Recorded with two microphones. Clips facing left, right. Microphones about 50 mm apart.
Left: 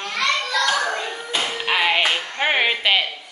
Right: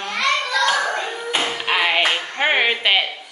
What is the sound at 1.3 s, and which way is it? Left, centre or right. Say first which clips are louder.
Music: right 2 dB; right.